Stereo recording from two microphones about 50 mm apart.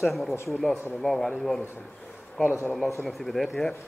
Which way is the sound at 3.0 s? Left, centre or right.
Centre.